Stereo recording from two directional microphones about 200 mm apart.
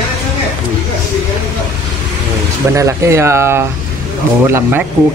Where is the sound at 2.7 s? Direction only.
15° right (ahead or behind).